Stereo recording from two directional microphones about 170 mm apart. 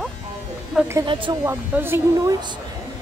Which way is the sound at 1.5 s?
15° right (ahead or behind).